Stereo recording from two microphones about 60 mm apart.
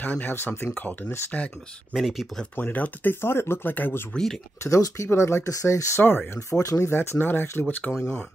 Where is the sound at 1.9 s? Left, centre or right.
Centre.